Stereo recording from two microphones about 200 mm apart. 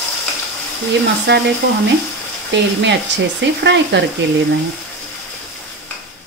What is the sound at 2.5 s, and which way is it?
Speech, 60° right (ahead or behind).